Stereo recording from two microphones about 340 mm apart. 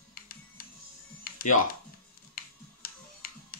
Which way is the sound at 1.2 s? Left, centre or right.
Left.